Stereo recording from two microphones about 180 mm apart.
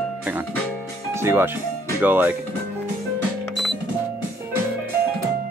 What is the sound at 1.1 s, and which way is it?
Speech, 15° right (ahead or behind).